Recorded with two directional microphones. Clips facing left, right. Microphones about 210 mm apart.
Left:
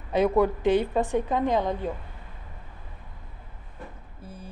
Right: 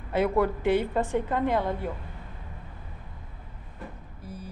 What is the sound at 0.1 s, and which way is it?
A woman's voice, 15° left (ahead or behind).